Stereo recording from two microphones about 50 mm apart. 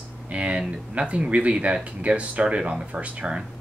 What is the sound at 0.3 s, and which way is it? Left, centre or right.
Speech, right.